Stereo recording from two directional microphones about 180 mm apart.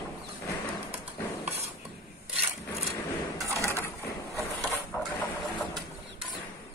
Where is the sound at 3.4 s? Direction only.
15° right (ahead or behind).